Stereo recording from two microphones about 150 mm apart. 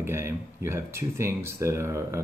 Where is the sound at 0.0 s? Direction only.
15° right (ahead or behind).